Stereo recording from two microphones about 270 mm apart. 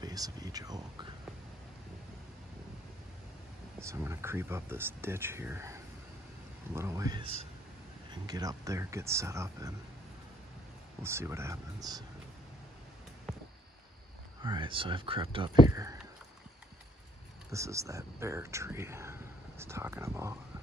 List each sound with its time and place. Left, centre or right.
0.0 s speech: centre
3.9 s speech: centre
11.0 s speech: centre
14.4 s speech: centre
17.5 s speech: centre